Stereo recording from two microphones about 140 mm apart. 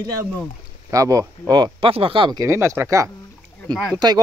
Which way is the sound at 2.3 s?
20° right (ahead or behind).